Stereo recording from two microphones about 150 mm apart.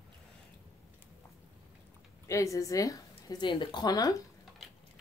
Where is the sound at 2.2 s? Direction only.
20° left (ahead or behind).